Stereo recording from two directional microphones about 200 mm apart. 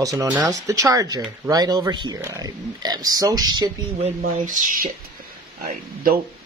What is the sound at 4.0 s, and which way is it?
Speech, 40° right (ahead or behind).